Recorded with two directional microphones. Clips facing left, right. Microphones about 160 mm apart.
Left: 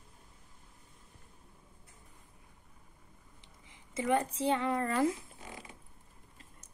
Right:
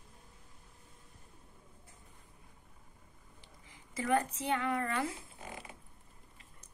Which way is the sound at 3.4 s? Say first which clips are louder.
Right 3 dB; 20° left (ahead or behind).